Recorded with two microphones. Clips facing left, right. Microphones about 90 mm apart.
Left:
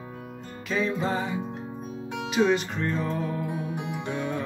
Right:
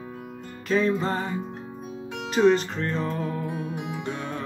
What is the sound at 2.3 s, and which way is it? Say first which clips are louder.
Speech: right 4 dB; 35° right (ahead or behind).